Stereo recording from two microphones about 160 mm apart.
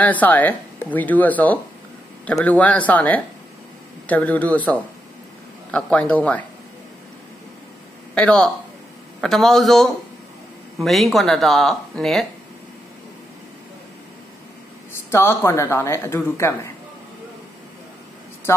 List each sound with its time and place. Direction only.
0.0 s speech: 10° left (ahead or behind)
8.1 s speech: 5° left (ahead or behind)
14.9 s speech: 15° left (ahead or behind)